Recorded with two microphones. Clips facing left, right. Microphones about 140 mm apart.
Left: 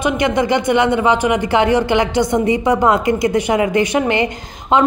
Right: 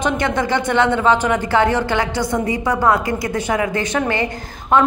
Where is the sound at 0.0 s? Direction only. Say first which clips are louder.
Left 3 dB; 15° left (ahead or behind).